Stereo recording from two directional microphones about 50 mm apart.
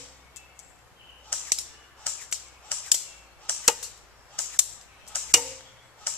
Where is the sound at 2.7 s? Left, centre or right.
Left.